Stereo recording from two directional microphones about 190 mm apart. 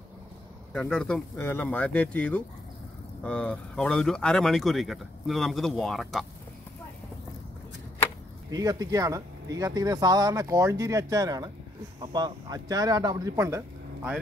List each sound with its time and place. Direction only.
0.7 s speech: 5° left (ahead or behind)
8.5 s speech: 20° right (ahead or behind)